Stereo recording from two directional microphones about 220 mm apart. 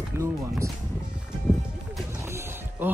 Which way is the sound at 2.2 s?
10° right (ahead or behind).